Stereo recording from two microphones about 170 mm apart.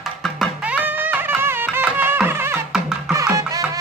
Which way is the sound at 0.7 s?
10° right (ahead or behind).